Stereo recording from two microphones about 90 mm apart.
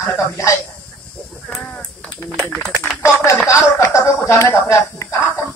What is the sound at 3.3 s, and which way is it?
Speech, 35° left (ahead or behind).